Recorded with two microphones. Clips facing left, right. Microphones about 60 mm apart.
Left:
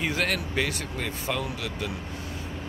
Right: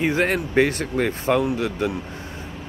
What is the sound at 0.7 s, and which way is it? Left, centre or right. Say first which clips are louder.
Speech: right 9 dB; right.